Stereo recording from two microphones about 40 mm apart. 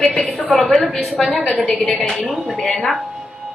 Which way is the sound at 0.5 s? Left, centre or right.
Centre.